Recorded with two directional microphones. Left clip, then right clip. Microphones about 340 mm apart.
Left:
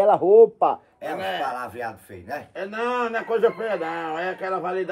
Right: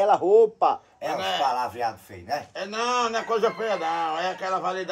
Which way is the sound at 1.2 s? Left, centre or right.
Centre.